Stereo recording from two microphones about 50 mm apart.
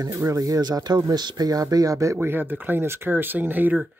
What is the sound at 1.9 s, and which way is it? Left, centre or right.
Speech, right.